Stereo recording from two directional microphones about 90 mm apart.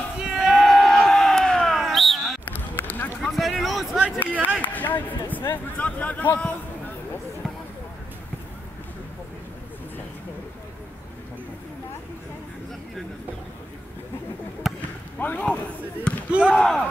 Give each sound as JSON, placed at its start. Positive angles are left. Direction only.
{"t": 0.2, "sound": "crowd", "side_deg": -5}
{"t": 2.5, "sound": "a sound", "side_deg": 20}
{"t": 3.2, "sound": "a sound", "side_deg": 0}
{"t": 4.2, "sound": "run", "side_deg": 20}
{"t": 4.6, "sound": "a sound", "side_deg": 20}
{"t": 5.8, "sound": "a man's voice", "side_deg": 15}
{"t": 14.7, "sound": "basketball bounce", "side_deg": -5}
{"t": 15.1, "sound": "basketball bounce", "side_deg": 20}
{"t": 16.3, "sound": "slam", "side_deg": -10}
{"t": 16.5, "sound": "speech", "side_deg": 5}